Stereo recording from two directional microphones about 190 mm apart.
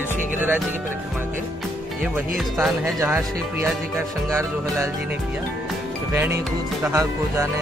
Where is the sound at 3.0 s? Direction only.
10° right (ahead or behind).